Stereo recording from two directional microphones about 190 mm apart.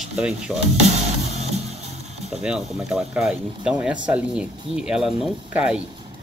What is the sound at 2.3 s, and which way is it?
Speech, 5° right (ahead or behind).